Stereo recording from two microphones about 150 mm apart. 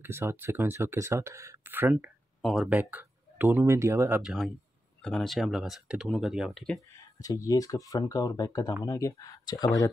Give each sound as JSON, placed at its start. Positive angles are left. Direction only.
{"t": 0.0, "sound": "speech", "side_deg": -15}
{"t": 2.4, "sound": "speech", "side_deg": 0}
{"t": 4.2, "sound": "speech", "side_deg": -5}
{"t": 7.2, "sound": "speech", "side_deg": 25}